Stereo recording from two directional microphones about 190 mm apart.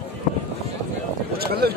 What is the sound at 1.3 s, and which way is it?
Speech, 55° right (ahead or behind).